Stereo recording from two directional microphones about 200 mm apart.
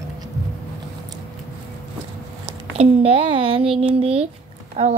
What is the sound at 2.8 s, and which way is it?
A woman's voice, 30° right (ahead or behind).